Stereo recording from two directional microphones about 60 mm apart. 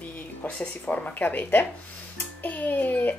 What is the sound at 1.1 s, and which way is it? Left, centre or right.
Speech, left.